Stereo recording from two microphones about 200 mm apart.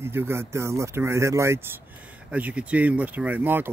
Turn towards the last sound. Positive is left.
turn(degrees=-10)  # may be behind; listen again after turning